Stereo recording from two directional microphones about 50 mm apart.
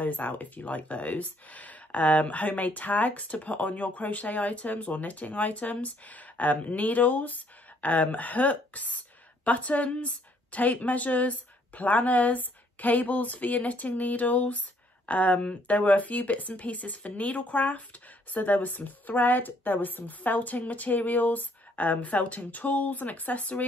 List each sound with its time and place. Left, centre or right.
0.0 s speech: left